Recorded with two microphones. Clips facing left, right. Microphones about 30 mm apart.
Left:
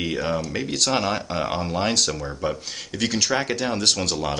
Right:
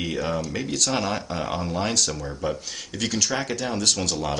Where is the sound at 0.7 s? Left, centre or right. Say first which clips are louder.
Left 3 dB; left.